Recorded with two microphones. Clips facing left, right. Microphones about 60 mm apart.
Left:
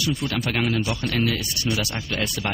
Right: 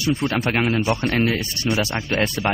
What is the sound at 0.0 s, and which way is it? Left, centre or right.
Speech, right.